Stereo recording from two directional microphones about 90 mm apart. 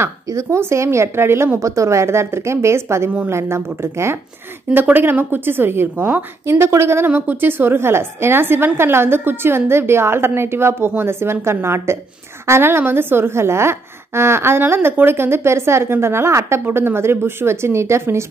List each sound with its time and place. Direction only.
0.0 s a woman's voice: 35° right (ahead or behind)